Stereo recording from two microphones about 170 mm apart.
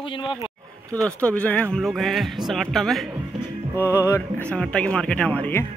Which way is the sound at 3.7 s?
15° left (ahead or behind).